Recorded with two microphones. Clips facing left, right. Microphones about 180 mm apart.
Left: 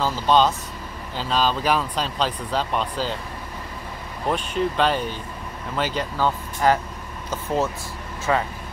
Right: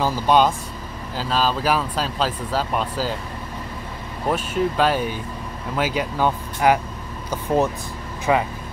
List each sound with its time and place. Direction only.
0.0 s speech: 10° right (ahead or behind)
4.3 s speech: 5° right (ahead or behind)